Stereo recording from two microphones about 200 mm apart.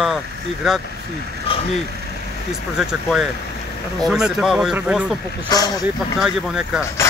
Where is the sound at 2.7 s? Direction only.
5° right (ahead or behind).